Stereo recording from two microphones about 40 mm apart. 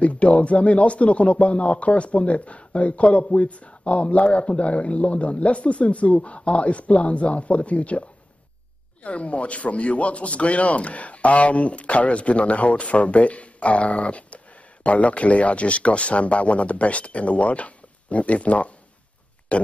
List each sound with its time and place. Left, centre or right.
0.0 s a man's voice: left
9.0 s a man's voice: left